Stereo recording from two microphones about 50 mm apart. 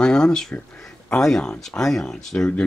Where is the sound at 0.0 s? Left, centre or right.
Centre.